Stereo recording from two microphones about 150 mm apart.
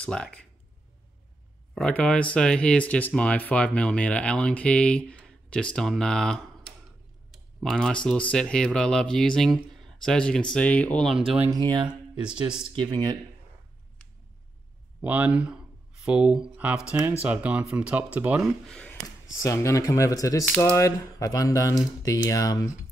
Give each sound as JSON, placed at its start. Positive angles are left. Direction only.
{"t": 0.0, "sound": "speech", "side_deg": 5}
{"t": 1.8, "sound": "speech", "side_deg": 10}
{"t": 7.6, "sound": "speech", "side_deg": 5}
{"t": 11.5, "sound": "speech", "side_deg": -30}
{"t": 11.9, "sound": "speech", "side_deg": -5}
{"t": 12.7, "sound": "speech", "side_deg": -30}
{"t": 15.0, "sound": "speech", "side_deg": -10}
{"t": 16.5, "sound": "a sound", "side_deg": -10}
{"t": 17.2, "sound": "speech", "side_deg": -10}
{"t": 18.7, "sound": "a sound", "side_deg": 5}
{"t": 19.4, "sound": "speech", "side_deg": 20}
{"t": 20.4, "sound": "speech", "side_deg": 10}